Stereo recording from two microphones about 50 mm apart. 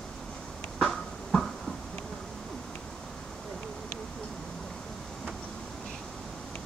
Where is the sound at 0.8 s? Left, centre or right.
Centre.